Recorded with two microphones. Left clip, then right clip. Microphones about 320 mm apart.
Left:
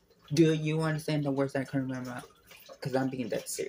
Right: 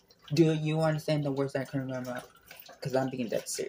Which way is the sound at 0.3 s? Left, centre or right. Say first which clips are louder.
Left 1 dB; centre.